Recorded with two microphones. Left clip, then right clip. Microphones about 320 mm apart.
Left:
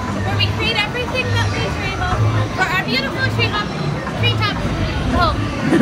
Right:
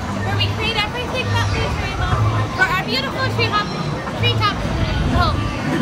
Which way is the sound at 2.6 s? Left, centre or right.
Centre.